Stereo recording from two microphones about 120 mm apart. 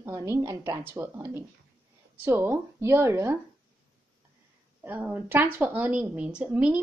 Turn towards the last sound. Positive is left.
turn(degrees=-10)  # may be behind; listen again after turning